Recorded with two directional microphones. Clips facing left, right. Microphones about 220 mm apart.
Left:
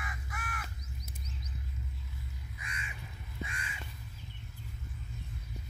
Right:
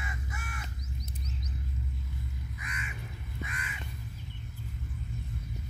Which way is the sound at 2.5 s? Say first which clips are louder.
Right 2 dB; 30° left (ahead or behind).